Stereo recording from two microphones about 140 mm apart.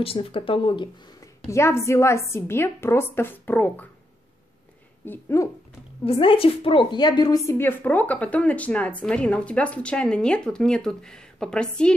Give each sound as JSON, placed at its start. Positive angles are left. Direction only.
{"t": 0.0, "sound": "speech", "side_deg": 40}
{"t": 1.5, "sound": "a woman's voice", "side_deg": 20}
{"t": 5.0, "sound": "a woman's voice", "side_deg": 15}
{"t": 6.0, "sound": "a woman's voice", "side_deg": 40}